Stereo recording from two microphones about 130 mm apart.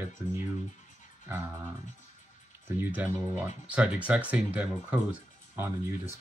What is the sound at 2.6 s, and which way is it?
Speech, 10° right (ahead or behind).